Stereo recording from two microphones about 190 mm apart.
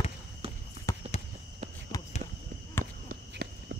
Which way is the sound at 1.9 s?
20° left (ahead or behind).